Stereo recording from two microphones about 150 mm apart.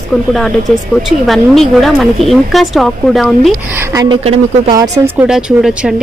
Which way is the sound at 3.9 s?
25° right (ahead or behind).